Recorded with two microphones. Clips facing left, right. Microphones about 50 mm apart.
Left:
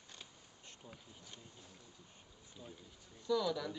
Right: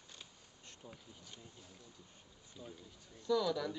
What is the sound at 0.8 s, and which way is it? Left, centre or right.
Speech, centre.